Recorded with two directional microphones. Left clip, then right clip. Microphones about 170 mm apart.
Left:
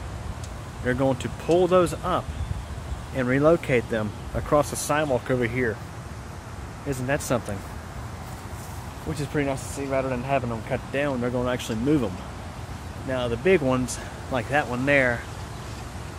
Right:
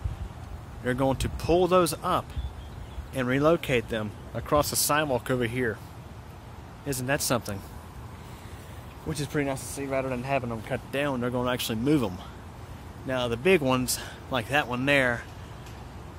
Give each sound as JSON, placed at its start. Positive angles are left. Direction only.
{"t": 0.8, "sound": "speech", "side_deg": -40}
{"t": 3.2, "sound": "speech", "side_deg": -30}
{"t": 4.8, "sound": "speech", "side_deg": -35}
{"t": 6.9, "sound": "speech", "side_deg": -45}
{"t": 7.2, "sound": "speech", "side_deg": -35}
{"t": 9.1, "sound": "speech", "side_deg": -45}
{"t": 13.1, "sound": "speech", "side_deg": -40}